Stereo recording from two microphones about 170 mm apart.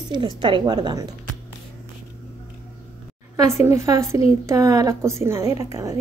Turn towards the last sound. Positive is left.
turn(degrees=-20)  # may be behind; listen again after turning